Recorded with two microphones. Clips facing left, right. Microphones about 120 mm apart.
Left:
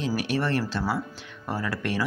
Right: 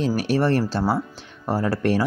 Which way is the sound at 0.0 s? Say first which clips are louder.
Right 6 dB; 35° right (ahead or behind).